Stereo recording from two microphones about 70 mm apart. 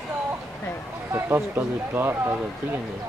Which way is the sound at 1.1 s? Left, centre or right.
Right.